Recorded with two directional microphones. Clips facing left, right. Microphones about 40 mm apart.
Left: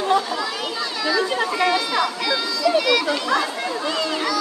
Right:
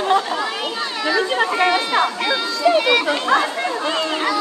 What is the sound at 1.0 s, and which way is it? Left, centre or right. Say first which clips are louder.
Chatter: right 3 dB; right.